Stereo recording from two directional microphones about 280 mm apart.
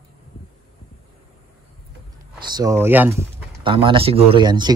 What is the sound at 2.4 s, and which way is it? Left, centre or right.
Speech, centre.